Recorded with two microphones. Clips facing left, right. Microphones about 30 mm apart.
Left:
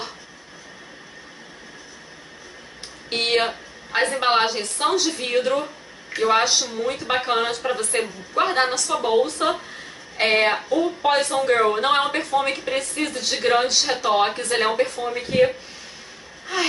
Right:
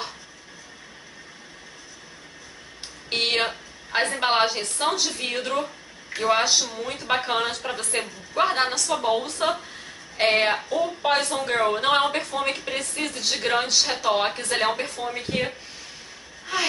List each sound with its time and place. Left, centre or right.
3.1 s speech: centre
3.4 s a sound: centre
4.2 s speech: centre